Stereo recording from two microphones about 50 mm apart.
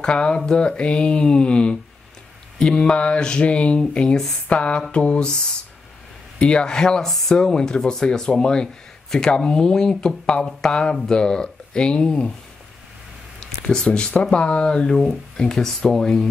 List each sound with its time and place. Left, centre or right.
0.0 s speech: centre
13.8 s speech: left
15.0 s speech: centre